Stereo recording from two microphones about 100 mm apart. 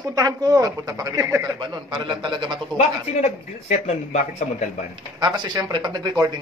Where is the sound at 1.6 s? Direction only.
50° right (ahead or behind).